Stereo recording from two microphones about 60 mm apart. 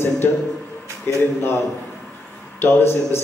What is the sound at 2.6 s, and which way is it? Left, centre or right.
Speech, left.